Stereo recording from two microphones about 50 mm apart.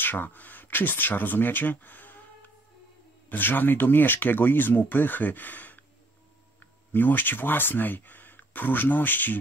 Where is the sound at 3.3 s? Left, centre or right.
Left.